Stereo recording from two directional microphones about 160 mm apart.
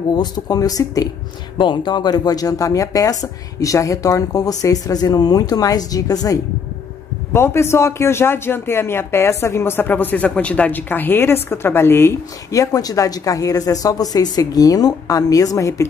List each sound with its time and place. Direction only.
0.1 s speech: 25° left (ahead or behind)